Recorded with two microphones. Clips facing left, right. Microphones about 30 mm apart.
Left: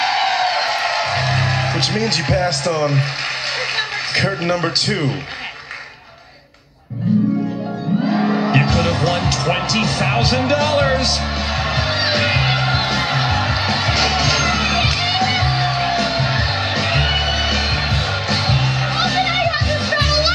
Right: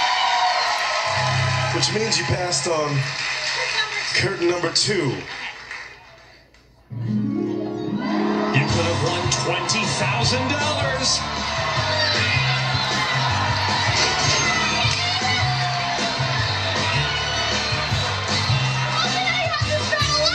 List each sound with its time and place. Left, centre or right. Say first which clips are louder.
0.0 s music: left 2 dB; left
2.0 s speech: left 4 dB; left
8.1 s music: left 3 dB; left